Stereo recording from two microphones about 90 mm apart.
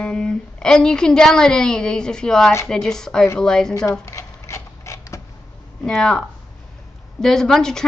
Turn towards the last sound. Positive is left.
turn(degrees=5)  # may be behind; listen again after turning